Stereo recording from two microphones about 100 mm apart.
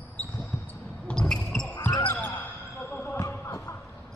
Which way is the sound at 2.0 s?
15° left (ahead or behind).